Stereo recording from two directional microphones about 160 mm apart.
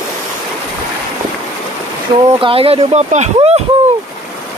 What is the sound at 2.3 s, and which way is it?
Speech, 35° right (ahead or behind).